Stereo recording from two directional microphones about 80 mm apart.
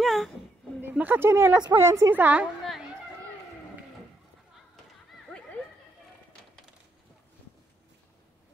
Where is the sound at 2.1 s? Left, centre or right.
Centre.